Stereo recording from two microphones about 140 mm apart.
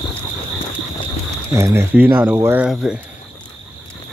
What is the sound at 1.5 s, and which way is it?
Speech, 20° right (ahead or behind).